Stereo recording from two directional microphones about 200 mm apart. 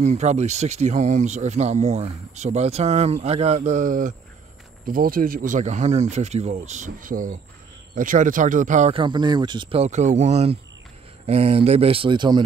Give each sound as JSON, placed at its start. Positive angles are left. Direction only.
{"t": 0.0, "sound": "speech", "side_deg": -35}